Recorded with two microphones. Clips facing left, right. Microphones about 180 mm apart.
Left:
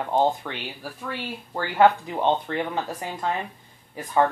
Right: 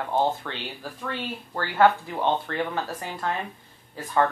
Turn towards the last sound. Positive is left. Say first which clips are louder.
# left 1 dB
turn(degrees=15)  # may be behind; listen again after turning